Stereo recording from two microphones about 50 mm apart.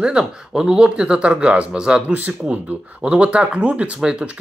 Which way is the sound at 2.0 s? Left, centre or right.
Right.